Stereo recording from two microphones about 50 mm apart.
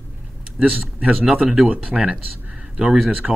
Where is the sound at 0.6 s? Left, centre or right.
Right.